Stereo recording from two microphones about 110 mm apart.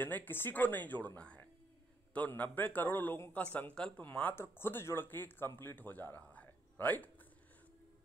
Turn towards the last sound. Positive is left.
turn(degrees=15)  # may be behind; listen again after turning